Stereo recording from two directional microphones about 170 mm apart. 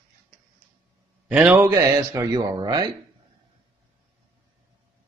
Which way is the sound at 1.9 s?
25° right (ahead or behind).